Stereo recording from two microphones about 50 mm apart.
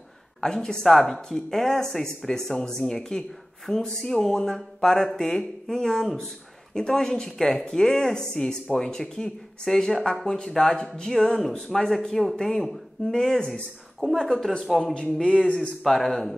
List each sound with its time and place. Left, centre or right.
0.4 s speech: centre
15.0 s a man's voice: centre
15.8 s speech: centre